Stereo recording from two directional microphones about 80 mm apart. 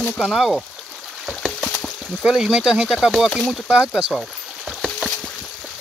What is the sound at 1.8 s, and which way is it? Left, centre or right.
Speech, centre.